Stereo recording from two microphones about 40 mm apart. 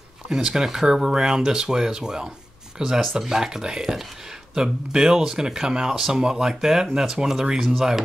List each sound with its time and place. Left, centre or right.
0.3 s speech: centre